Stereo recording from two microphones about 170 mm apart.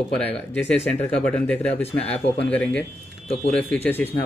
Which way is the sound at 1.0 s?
5° left (ahead or behind).